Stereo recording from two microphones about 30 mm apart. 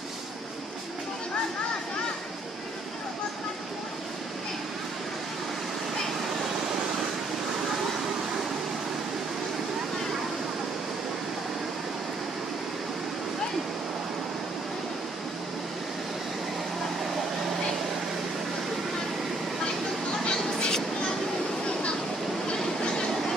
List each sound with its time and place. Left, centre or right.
20.2 s train: left
22.5 s train: left